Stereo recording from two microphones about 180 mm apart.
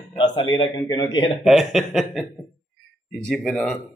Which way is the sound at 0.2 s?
25° left (ahead or behind).